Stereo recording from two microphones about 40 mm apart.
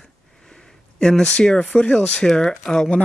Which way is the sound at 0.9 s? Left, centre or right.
Centre.